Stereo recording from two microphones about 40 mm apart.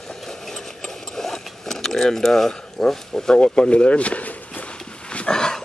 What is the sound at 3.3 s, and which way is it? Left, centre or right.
Speech, left.